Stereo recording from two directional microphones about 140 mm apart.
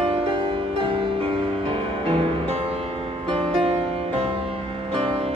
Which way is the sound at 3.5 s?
45° right (ahead or behind).